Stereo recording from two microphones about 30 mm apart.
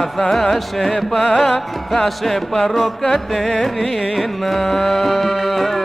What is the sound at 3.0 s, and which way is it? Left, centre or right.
Music, centre.